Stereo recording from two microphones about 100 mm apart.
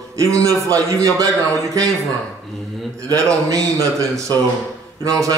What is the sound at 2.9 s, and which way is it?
A man's voice, 35° right (ahead or behind).